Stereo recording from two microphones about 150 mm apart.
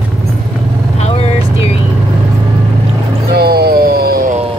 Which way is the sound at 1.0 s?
45° left (ahead or behind).